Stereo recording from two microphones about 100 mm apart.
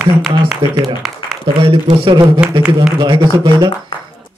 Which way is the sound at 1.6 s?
55° right (ahead or behind).